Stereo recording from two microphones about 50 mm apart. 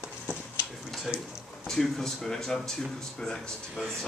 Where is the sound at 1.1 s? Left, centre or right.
Centre.